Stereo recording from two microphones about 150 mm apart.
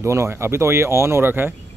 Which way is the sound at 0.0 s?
20° right (ahead or behind).